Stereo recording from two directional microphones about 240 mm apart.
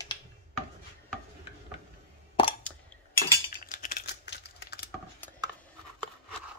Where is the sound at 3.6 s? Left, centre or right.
Left.